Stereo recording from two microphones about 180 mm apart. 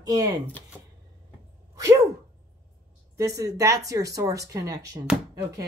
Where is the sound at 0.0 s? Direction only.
20° right (ahead or behind).